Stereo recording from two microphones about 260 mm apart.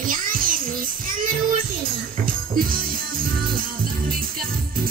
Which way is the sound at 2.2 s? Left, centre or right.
Right.